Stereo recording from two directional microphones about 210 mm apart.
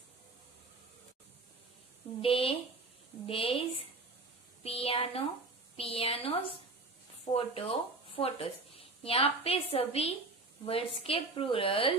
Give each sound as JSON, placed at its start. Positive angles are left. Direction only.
{"t": 2.2, "sound": "a woman's voice", "side_deg": 25}
{"t": 4.6, "sound": "a woman's voice", "side_deg": 25}